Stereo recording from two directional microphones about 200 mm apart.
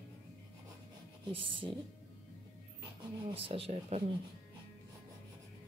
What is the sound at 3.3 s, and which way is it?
Speech, 30° right (ahead or behind).